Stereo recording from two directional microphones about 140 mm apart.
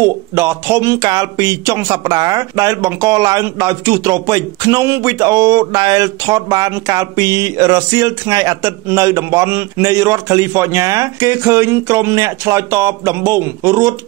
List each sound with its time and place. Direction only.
0.0 s speech: 20° right (ahead or behind)